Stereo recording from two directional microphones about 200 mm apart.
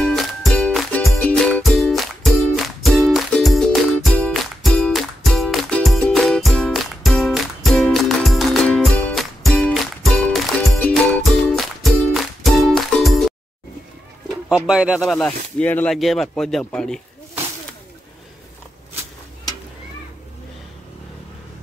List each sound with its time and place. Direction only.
0.0 s music: centre (ahead or behind)
14.5 s speech: 5° right (ahead or behind)